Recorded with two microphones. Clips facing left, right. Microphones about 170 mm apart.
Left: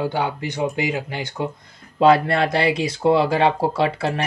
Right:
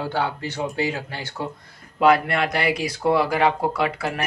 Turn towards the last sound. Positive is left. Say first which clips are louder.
# left 3 dB
turn(degrees=25)  # may be behind; listen again after turning